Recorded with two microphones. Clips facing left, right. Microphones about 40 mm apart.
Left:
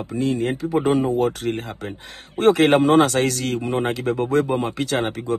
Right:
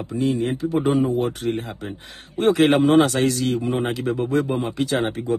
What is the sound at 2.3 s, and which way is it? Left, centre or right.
Speech, left.